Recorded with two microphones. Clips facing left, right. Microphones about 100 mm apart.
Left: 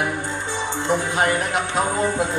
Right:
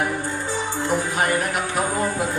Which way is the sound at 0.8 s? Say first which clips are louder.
Left 2 dB; 20° left (ahead or behind).